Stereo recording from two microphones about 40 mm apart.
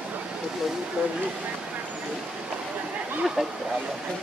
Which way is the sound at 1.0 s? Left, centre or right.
Right.